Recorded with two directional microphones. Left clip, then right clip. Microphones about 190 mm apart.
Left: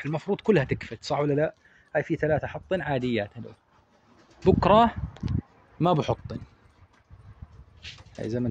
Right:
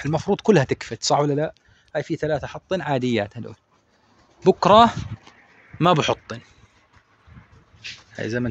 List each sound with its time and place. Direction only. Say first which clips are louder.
0.0 s speech: right 6 dB; 35° right (ahead or behind)
1.2 s a man's voice: right 2 dB; 20° right (ahead or behind)
2.7 s speech: right 5 dB; 30° right (ahead or behind)
4.6 s speech: right 6 dB; 15° right (ahead or behind)
5.8 s speech: right 6 dB; centre (ahead or behind)
7.8 s speech: right 6 dB; centre (ahead or behind)